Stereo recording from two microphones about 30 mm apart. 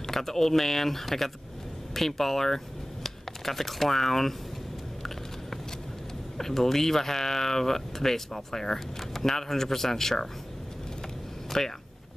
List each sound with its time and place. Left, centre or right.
0.0 s speech: centre
6.3 s speech: centre
11.5 s speech: centre